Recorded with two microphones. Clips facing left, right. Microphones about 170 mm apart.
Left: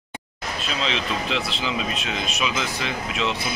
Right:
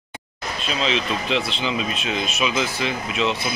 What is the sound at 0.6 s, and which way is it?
Speech, centre (ahead or behind).